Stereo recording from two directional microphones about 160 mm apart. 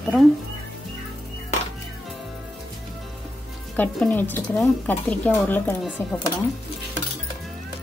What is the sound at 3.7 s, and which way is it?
Speech, 10° left (ahead or behind).